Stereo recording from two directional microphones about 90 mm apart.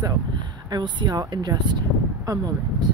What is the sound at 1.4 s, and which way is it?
Speech, 55° right (ahead or behind).